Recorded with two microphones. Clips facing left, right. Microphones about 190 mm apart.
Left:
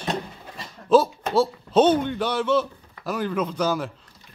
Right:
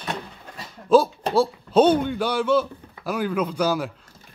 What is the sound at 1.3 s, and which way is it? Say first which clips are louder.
A man's voice: right 1 dB; centre (ahead or behind).